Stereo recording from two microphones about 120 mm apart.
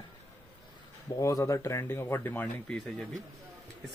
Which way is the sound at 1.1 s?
25° left (ahead or behind).